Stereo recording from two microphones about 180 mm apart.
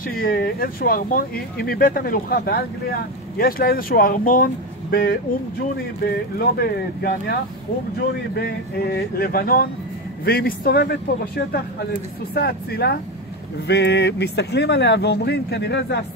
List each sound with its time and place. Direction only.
0.2 s a man's voice: 55° left (ahead or behind)
6.0 s a man's voice: 60° left (ahead or behind)
8.4 s a man's voice: 60° left (ahead or behind)